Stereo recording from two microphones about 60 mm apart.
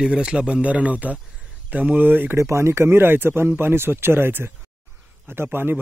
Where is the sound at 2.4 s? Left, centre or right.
Right.